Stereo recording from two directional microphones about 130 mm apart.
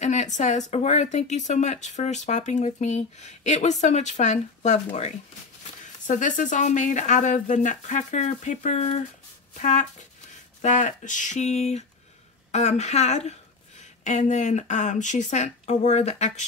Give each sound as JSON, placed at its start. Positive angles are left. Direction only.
{"t": 0.0, "sound": "speech", "side_deg": 65}
{"t": 6.0, "sound": "speech", "side_deg": 75}